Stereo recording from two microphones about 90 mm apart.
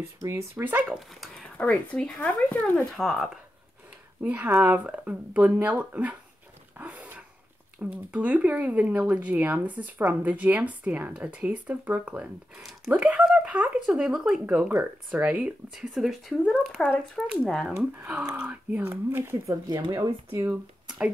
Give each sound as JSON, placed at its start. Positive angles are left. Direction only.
{"t": 0.2, "sound": "speech", "side_deg": -30}
{"t": 0.9, "sound": "speech", "side_deg": 0}
{"t": 1.6, "sound": "speech", "side_deg": 15}
{"t": 2.9, "sound": "speech", "side_deg": 0}
{"t": 4.2, "sound": "speech", "side_deg": -15}
{"t": 6.8, "sound": "a sound", "side_deg": -15}
{"t": 7.8, "sound": "speech", "side_deg": -15}
{"t": 12.5, "sound": "speech", "side_deg": -5}
{"t": 17.7, "sound": "speech", "side_deg": -20}